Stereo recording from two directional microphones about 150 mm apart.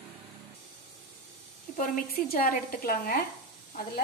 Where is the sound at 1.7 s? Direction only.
75° left (ahead or behind).